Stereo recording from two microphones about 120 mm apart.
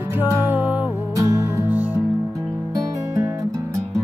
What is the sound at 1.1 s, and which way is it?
Music, 25° right (ahead or behind).